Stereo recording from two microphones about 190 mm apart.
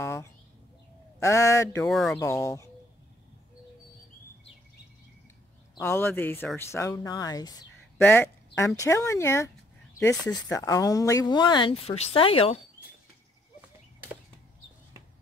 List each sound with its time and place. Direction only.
0.0 s bird: 15° left (ahead or behind)
1.2 s speech: 15° left (ahead or behind)
1.9 s speech: centre (ahead or behind)
2.1 s speech: 15° left (ahead or behind)
5.8 s speech: 10° left (ahead or behind)
8.0 s speech: 10° left (ahead or behind); by 12.6 s 30° left (ahead or behind)